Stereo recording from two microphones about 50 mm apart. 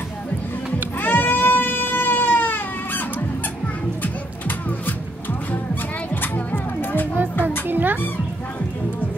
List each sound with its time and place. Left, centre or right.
1.0 s goat: left
4.0 s music: left
6.2 s music: left
7.6 s children playing: right